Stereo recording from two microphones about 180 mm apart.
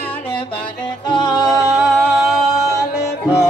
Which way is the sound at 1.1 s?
25° left (ahead or behind).